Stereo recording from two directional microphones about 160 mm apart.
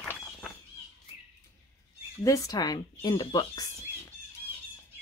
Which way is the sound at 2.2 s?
20° left (ahead or behind).